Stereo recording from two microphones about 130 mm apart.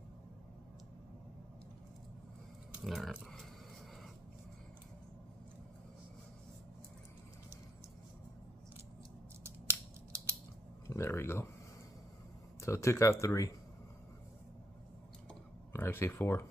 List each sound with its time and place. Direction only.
2.7 s speech: centre (ahead or behind)
9.4 s scissors: 20° right (ahead or behind)
10.9 s speech: 20° left (ahead or behind)
12.5 s speech: 20° left (ahead or behind)
15.7 s speech: 15° left (ahead or behind)